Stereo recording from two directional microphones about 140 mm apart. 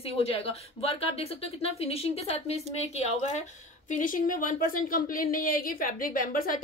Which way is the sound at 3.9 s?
75° left (ahead or behind).